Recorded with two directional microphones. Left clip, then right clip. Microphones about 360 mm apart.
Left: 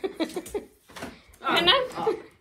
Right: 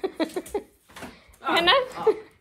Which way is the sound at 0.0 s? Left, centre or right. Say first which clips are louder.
Right 2 dB; centre.